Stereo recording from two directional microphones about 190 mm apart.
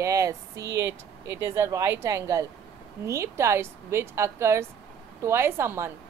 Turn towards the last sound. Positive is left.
turn(degrees=-15)  # may be behind; listen again after turning